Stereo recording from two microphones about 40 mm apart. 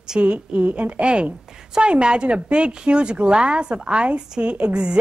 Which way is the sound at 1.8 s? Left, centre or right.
Right.